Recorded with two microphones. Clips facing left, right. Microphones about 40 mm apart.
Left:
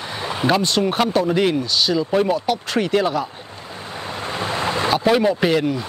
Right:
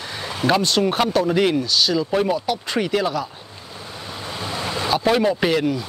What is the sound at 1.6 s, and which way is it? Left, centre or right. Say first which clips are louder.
Speech: even; centre.